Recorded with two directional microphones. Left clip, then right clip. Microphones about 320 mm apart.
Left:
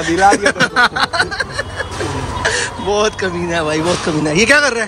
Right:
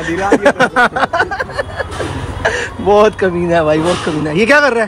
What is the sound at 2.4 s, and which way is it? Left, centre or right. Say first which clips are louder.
Speech: right 4 dB; centre.